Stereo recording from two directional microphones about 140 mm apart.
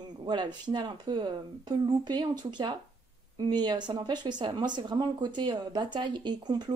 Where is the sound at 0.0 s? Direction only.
30° right (ahead or behind).